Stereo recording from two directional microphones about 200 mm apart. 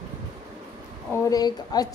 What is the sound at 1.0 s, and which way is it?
Speech, 15° left (ahead or behind).